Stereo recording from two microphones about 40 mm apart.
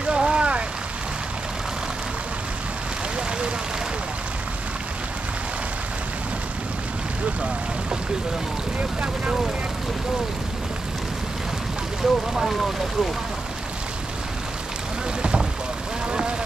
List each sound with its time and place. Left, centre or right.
0.0 s a sound: right
8.7 s speech: right
12.0 s speech: centre
16.1 s vehicle: right